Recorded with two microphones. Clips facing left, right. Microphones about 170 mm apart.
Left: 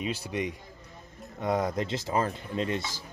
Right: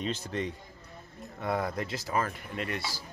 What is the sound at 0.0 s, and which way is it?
Speech, 10° left (ahead or behind).